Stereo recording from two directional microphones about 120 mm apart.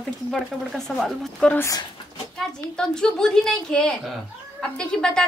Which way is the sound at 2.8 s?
5° left (ahead or behind).